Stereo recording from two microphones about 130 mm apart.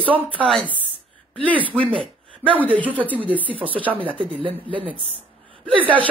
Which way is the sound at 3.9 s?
45° right (ahead or behind).